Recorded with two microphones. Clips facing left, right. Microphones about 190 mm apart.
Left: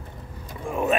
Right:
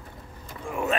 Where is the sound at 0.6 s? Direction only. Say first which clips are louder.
Left 4 dB; 20° left (ahead or behind).